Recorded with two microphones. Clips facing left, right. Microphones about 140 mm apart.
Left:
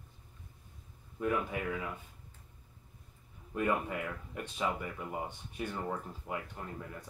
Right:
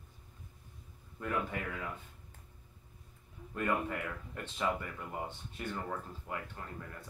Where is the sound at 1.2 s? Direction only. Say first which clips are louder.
Left 6 dB; 15° left (ahead or behind).